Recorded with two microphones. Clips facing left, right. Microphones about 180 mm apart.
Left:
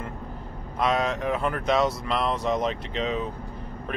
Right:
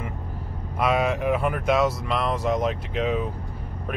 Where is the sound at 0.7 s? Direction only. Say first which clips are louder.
Right 2 dB; 5° right (ahead or behind).